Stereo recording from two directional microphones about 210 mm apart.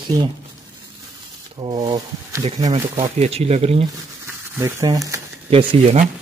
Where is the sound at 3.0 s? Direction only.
30° right (ahead or behind).